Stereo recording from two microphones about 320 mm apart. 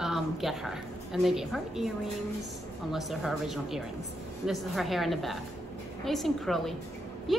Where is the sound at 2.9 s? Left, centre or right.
Centre.